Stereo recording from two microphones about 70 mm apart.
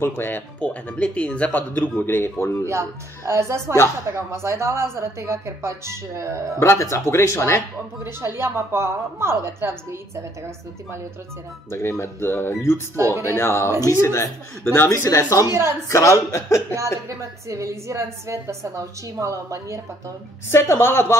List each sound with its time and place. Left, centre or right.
0.0 s speech: left
2.6 s a woman's voice: right
6.6 s speech: left
8.0 s a woman's voice: right
11.7 s speech: left
12.9 s a woman's voice: right
13.3 s speech: left
17.5 s a woman's voice: right
20.4 s speech: left